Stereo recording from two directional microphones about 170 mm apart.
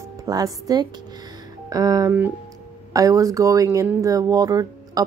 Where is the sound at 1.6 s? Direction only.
20° right (ahead or behind).